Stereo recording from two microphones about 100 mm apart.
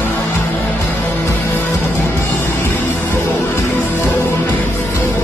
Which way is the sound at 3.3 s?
20° left (ahead or behind).